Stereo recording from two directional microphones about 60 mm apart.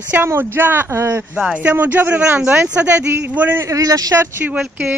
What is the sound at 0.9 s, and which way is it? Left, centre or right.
Speech, right.